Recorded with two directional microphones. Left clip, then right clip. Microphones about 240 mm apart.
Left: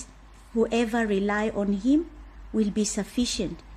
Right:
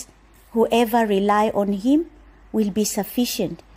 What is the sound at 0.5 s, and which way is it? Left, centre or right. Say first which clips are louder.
Speech: right 7 dB; right.